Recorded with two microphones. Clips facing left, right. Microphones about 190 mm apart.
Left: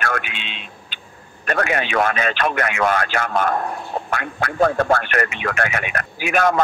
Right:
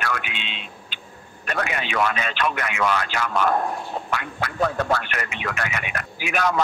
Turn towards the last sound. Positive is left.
turn(degrees=50)  # may be behind; listen again after turning